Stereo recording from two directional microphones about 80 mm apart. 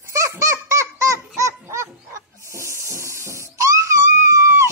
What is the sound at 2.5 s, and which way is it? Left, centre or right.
Hiss, right.